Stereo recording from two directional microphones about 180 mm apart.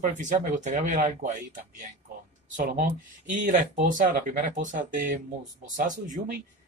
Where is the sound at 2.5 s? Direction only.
55° right (ahead or behind).